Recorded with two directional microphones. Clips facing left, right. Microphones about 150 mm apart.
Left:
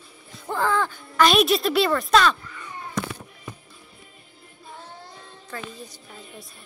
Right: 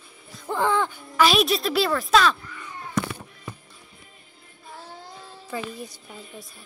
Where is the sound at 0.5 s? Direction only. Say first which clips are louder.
Even; 20° right (ahead or behind).